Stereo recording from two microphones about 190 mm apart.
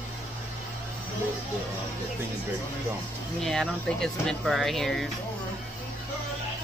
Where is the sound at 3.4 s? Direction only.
5° left (ahead or behind).